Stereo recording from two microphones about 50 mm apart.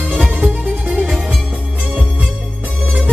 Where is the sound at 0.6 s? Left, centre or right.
Right.